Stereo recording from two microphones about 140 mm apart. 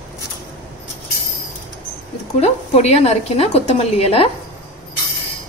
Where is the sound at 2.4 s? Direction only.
50° left (ahead or behind).